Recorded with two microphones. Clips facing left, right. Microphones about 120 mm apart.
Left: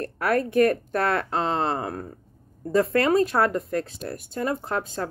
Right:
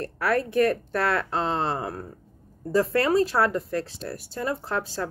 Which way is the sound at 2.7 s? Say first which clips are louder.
Left 1 dB; 30° right (ahead or behind).